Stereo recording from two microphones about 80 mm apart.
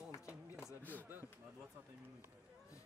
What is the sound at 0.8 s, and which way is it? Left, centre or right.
Chop, left.